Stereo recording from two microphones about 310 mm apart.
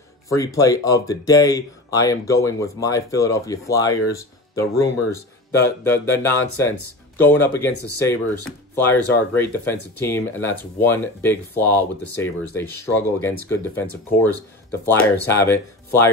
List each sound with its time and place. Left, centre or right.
0.3 s speech: centre
14.9 s speech: centre